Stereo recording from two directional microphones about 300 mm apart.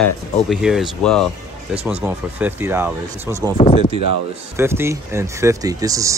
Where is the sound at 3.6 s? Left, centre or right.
Centre.